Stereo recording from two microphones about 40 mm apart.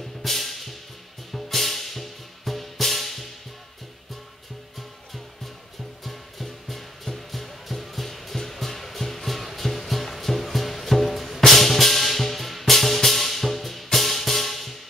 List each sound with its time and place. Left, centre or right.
0.2 s music: centre
6.0 s music: centre